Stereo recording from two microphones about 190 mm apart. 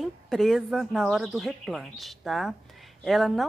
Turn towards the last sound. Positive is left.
turn(degrees=0)  # may be behind; listen again after turning